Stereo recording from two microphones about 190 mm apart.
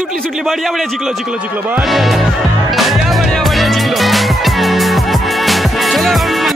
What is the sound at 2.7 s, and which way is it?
Music, centre (ahead or behind).